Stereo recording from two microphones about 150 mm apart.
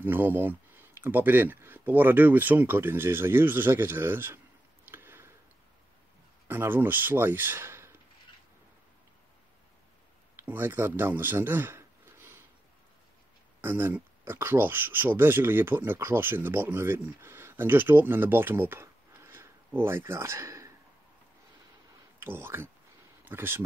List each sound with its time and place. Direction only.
0.0 s speech: 15° right (ahead or behind)
4.8 s a sound: 15° right (ahead or behind)
6.4 s speech: 15° right (ahead or behind)
10.3 s a sound: 15° right (ahead or behind)
13.6 s speech: 15° right (ahead or behind)
22.2 s speech: 15° right (ahead or behind)